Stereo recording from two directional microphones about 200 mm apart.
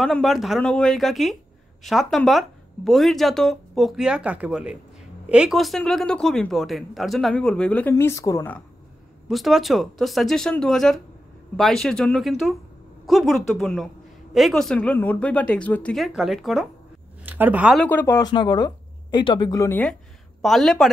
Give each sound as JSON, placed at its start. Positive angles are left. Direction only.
{"t": 0.0, "sound": "speech", "side_deg": 0}
{"t": 9.3, "sound": "a woman's voice", "side_deg": 0}
{"t": 17.8, "sound": "speech", "side_deg": 10}